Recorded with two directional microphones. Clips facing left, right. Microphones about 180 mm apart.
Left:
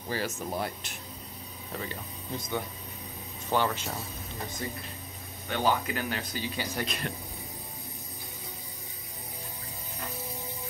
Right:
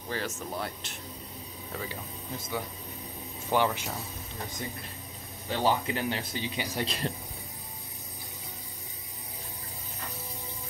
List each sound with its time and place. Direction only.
0.1 s speech: 10° left (ahead or behind)
1.9 s speech: 5° right (ahead or behind)
5.5 s speech: 30° right (ahead or behind)
6.9 s speech: 30° right (ahead or behind)